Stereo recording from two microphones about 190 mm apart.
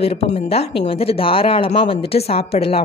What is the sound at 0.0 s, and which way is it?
Speech, 30° left (ahead or behind).